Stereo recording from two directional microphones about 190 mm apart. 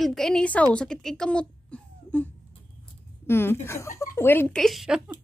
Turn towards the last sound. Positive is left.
turn(degrees=-5)  # may be behind; listen again after turning